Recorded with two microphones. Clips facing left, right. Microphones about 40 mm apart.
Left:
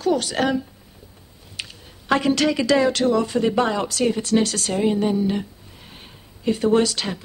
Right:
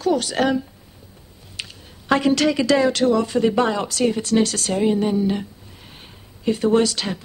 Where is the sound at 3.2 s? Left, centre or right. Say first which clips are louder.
Right 2 dB; centre.